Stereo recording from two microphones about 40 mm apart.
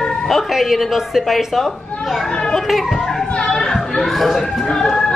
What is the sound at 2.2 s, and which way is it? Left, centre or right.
Speech, centre.